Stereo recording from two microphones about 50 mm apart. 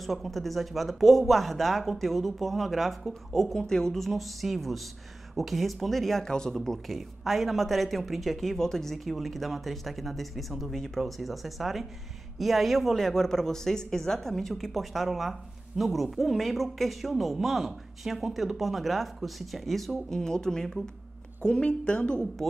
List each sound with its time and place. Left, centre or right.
0.0 s speech: centre
7.0 s speech: centre; by 22.2 s left